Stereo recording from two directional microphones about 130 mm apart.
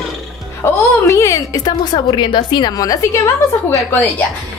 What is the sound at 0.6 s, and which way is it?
A woman's voice, 25° left (ahead or behind).